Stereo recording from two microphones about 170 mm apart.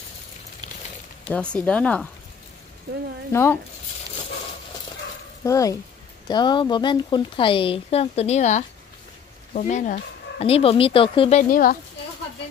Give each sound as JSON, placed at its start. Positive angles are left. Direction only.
{"t": 1.3, "sound": "speech", "side_deg": 5}
{"t": 3.3, "sound": "speech", "side_deg": 15}
{"t": 5.4, "sound": "speech", "side_deg": 20}
{"t": 10.4, "sound": "speech", "side_deg": 35}
{"t": 11.5, "sound": "speech", "side_deg": 60}